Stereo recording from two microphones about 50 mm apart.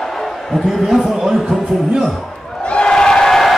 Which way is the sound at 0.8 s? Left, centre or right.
Centre.